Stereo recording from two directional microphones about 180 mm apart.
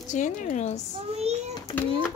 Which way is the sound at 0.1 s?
45° left (ahead or behind).